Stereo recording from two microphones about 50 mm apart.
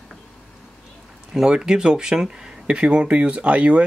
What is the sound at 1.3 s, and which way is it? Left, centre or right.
Speech, centre.